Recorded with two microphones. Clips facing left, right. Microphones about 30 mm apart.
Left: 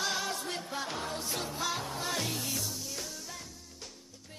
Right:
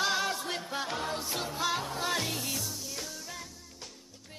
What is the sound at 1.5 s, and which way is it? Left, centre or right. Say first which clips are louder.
Music: right 3 dB; centre.